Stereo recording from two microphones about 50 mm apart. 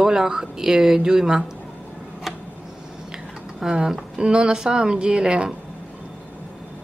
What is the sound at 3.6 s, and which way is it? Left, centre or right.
A woman's voice, centre.